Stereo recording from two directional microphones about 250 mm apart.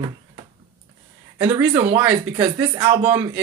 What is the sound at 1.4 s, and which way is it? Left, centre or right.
Speech, centre.